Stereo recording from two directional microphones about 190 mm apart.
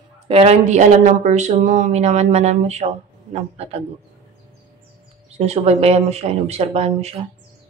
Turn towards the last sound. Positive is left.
turn(degrees=-30)  # may be behind; listen again after turning